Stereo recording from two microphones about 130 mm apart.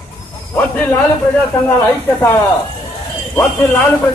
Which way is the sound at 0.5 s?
15° left (ahead or behind).